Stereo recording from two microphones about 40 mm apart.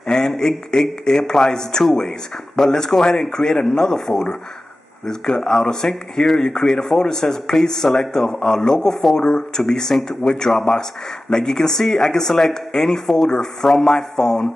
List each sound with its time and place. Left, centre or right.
0.0 s a sound: centre
0.3 s speech: centre
9.1 s speech: centre